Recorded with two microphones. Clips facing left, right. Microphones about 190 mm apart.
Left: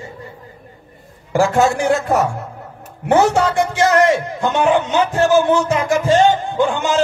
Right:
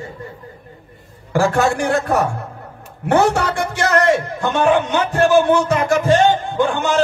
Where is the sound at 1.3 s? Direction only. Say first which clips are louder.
Left 2 dB; 20° left (ahead or behind).